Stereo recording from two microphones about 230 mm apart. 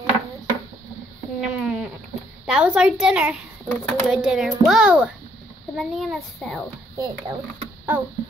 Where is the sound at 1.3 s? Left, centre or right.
Centre.